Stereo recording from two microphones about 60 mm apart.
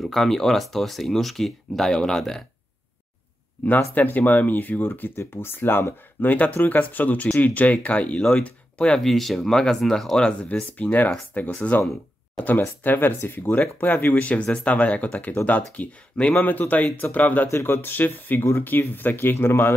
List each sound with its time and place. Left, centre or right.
0.0 s speech: centre
3.6 s speech: left
17.5 s speech: left
17.8 s speech: left